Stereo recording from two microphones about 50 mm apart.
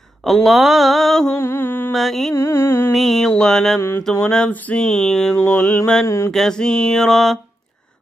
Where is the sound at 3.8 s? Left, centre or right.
Left.